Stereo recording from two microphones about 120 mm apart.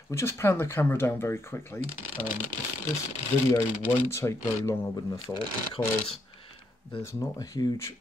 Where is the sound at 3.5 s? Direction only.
20° left (ahead or behind).